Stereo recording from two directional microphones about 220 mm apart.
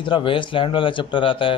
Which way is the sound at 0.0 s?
20° left (ahead or behind).